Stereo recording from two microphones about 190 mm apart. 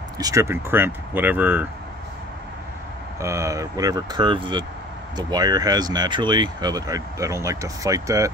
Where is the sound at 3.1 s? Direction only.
15° right (ahead or behind).